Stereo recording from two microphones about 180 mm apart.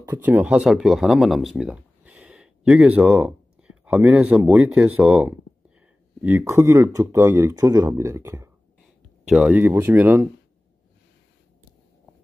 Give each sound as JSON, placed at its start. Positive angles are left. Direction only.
{"t": 0.0, "sound": "speech", "side_deg": -10}